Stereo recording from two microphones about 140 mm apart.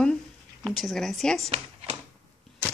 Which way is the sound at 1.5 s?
45° right (ahead or behind).